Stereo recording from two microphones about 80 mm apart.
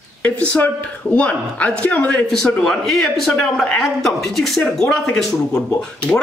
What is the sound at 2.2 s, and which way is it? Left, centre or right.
Speech, centre.